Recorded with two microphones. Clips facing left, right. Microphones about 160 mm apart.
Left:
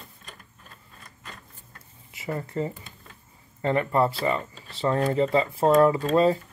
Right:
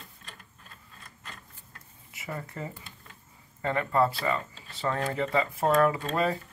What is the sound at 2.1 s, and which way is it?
Speech, 30° left (ahead or behind).